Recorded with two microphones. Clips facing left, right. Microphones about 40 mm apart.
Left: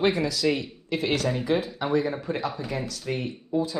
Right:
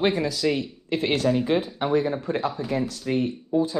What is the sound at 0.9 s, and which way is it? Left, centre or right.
Speech, right.